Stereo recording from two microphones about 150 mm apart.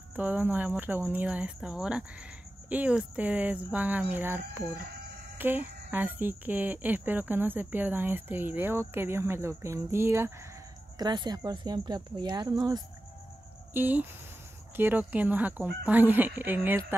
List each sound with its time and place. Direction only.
0.1 s speech: 10° right (ahead or behind)
11.0 s speech: 30° right (ahead or behind)
13.7 s speech: 10° right (ahead or behind)